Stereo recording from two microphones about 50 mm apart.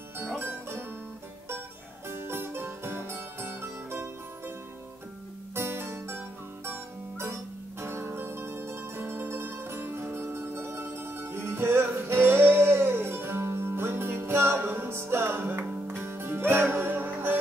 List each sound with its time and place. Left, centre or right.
0.4 s music: right
2.0 s music: right
5.5 s music: right